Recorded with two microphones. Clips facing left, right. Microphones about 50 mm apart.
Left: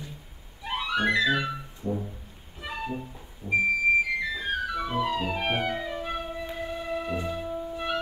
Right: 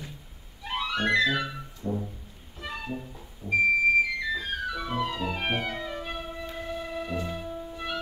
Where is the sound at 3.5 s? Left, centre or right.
Left.